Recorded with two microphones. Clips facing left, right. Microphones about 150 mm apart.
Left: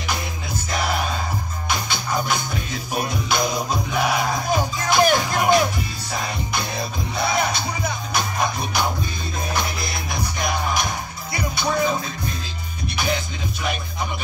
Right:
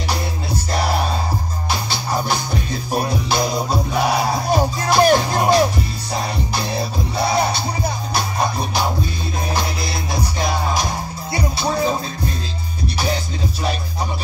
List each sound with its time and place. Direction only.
0.7 s music: 35° right (ahead or behind)